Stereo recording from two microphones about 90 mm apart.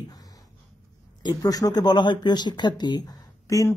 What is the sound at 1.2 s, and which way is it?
Speech, 45° left (ahead or behind).